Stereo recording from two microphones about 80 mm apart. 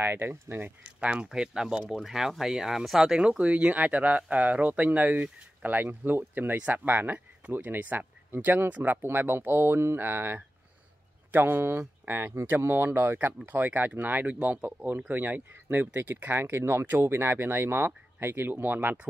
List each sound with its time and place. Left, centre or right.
0.0 s speech: right
0.8 s speech: centre